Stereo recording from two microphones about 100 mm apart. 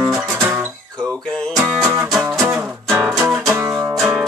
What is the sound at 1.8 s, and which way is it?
Music, centre (ahead or behind).